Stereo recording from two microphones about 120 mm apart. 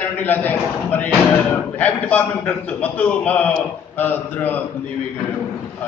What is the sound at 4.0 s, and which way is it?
Speech, 15° left (ahead or behind).